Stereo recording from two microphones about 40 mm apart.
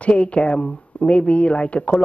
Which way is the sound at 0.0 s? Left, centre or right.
Left.